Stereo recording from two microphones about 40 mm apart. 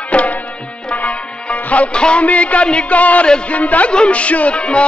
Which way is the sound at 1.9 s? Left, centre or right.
Left.